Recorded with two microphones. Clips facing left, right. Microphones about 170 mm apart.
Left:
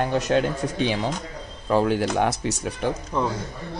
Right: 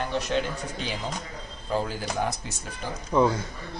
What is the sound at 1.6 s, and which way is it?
Speech, 75° left (ahead or behind).